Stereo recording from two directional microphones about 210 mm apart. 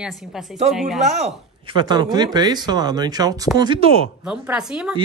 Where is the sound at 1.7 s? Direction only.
20° right (ahead or behind).